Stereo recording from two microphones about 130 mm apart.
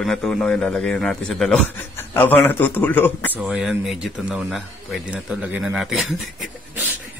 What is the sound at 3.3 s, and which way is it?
Speech, 5° right (ahead or behind).